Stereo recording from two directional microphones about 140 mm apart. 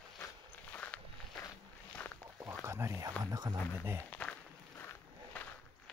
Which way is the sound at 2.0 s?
10° left (ahead or behind).